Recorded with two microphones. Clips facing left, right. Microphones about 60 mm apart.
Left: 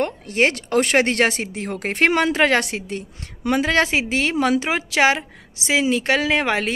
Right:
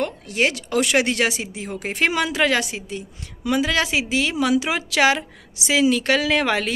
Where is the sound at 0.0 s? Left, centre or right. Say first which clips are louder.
Left 2 dB; left.